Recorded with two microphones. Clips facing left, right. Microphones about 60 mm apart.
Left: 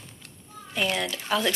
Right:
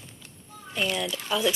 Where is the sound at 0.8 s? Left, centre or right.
Left.